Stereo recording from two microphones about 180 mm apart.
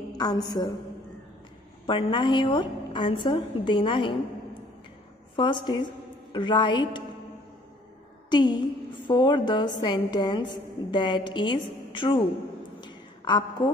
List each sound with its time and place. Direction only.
0.2 s a woman's voice: 20° left (ahead or behind)
1.9 s a woman's voice: 30° left (ahead or behind)
5.3 s a woman's voice: 25° left (ahead or behind)
8.3 s a woman's voice: 25° left (ahead or behind)
12.8 s a sound: 25° left (ahead or behind)